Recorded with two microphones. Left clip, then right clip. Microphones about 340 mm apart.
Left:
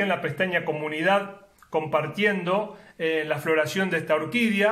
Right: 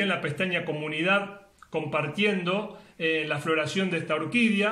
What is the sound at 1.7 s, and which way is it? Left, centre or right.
A man's voice, left.